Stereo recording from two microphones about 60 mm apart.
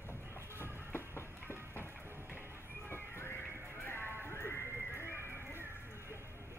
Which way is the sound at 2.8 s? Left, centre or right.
Left.